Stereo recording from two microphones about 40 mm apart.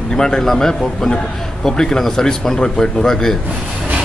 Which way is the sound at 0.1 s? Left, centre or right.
Centre.